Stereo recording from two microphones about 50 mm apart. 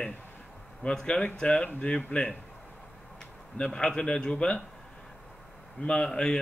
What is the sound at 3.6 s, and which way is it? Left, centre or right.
A man's voice, centre.